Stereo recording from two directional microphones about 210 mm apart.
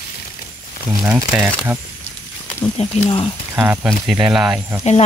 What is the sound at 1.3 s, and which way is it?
Speech, 5° right (ahead or behind).